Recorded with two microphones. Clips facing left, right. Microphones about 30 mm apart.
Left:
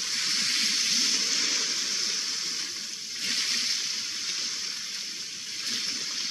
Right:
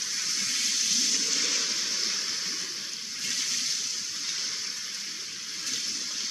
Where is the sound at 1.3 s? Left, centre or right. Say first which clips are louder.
Left 1 dB; centre.